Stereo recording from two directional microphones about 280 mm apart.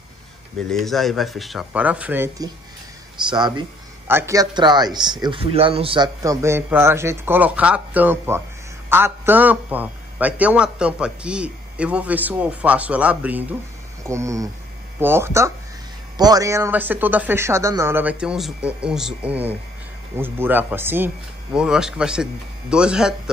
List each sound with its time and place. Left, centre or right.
0.6 s a man's voice: centre